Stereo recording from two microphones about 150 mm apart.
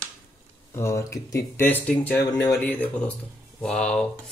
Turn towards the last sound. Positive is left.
turn(degrees=5)  # may be behind; listen again after turning